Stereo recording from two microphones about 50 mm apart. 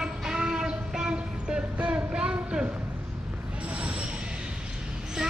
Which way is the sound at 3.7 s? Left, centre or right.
Right.